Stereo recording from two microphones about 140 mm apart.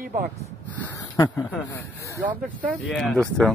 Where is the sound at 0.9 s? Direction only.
25° left (ahead or behind).